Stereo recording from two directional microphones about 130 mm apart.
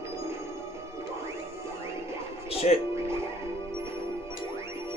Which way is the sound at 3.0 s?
20° right (ahead or behind).